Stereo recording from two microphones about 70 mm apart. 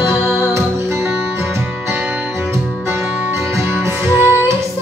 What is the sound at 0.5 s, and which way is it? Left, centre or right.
Music, right.